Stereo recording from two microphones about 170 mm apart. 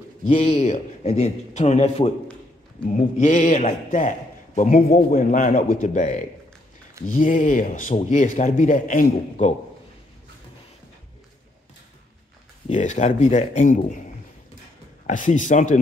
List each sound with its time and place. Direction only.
0.2 s a man's voice: 40° left (ahead or behind)
3.2 s speech: 45° left (ahead or behind)
12.6 s speech: 45° left (ahead or behind)
15.0 s speech: 50° left (ahead or behind)